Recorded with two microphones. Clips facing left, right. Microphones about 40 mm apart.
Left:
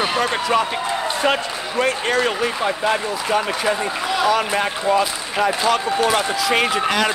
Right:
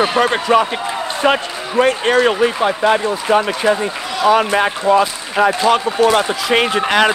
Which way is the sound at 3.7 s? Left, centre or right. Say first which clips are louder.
Right 3 dB; right.